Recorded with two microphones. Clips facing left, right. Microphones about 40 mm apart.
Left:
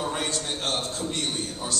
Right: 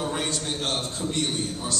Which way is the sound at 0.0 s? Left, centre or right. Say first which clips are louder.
Even; centre.